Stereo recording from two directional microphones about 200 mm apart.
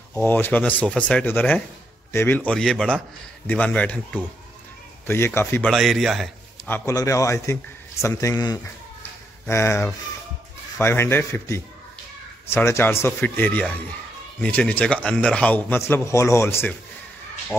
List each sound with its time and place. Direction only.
0.1 s a man's voice: 10° left (ahead or behind)